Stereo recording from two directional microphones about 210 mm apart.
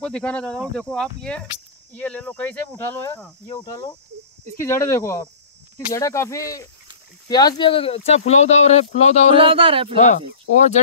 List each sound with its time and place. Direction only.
0.0 s speech: 5° left (ahead or behind); by 9.4 s 30° left (ahead or behind)
9.4 s speech: 25° right (ahead or behind)
9.9 s speech: 35° left (ahead or behind)